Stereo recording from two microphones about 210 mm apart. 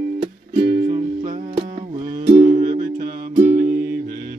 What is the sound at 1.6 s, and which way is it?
Music, 25° right (ahead or behind).